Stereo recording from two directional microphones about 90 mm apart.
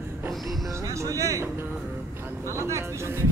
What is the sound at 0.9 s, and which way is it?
Music, 35° right (ahead or behind).